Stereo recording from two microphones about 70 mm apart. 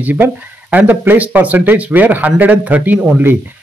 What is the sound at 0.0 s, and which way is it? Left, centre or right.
Speech, right.